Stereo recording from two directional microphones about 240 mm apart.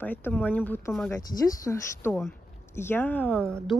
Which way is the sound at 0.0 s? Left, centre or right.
Centre.